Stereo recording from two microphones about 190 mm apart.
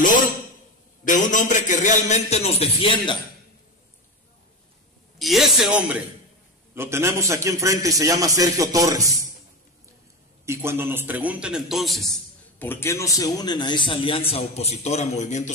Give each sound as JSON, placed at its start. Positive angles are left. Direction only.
{"t": 1.0, "sound": "a man's voice", "side_deg": 40}
{"t": 5.2, "sound": "a man's voice", "side_deg": 0}
{"t": 10.4, "sound": "a man's voice", "side_deg": -15}
{"t": 12.5, "sound": "a man's voice", "side_deg": 10}